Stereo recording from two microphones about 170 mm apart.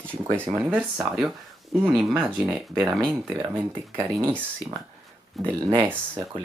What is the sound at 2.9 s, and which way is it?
Speech, 5° left (ahead or behind).